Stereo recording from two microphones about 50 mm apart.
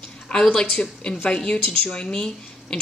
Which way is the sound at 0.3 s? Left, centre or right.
Centre.